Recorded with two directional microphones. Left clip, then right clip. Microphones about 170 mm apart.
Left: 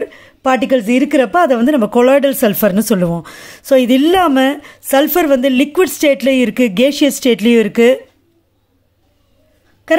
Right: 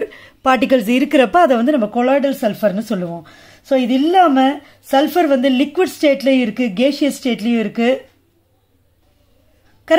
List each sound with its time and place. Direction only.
0.0 s speech: 5° left (ahead or behind)
1.8 s speech: 50° left (ahead or behind)
9.9 s speech: 20° left (ahead or behind)